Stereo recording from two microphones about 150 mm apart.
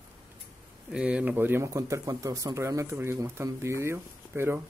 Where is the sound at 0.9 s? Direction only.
10° right (ahead or behind).